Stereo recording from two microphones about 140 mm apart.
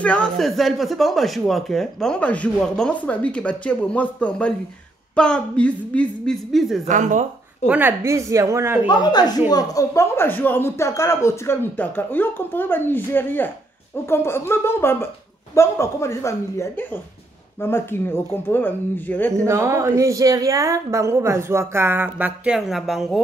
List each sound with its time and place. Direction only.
0.0 s speech: 10° left (ahead or behind)
6.9 s speech: 65° right (ahead or behind)
7.6 s speech: 10° right (ahead or behind)
8.8 s speech: 30° left (ahead or behind); by 19.4 s 10° left (ahead or behind)
19.4 s speech: 20° right (ahead or behind); by 23.2 s centre (ahead or behind)